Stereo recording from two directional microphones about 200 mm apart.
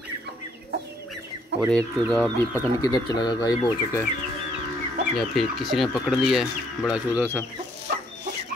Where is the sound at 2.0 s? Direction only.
5° left (ahead or behind).